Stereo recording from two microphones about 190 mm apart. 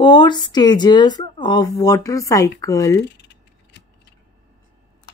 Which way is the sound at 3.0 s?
65° left (ahead or behind).